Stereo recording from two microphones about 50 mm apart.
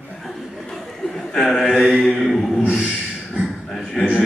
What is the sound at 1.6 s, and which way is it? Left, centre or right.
Mantra, centre.